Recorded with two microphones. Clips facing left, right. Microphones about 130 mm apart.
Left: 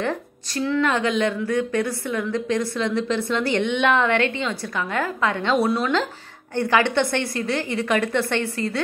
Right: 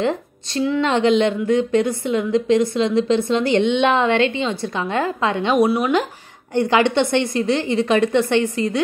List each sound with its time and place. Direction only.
0.0 s a woman's voice: 20° right (ahead or behind)